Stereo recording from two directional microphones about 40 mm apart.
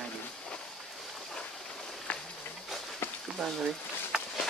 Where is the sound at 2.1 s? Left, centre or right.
Left.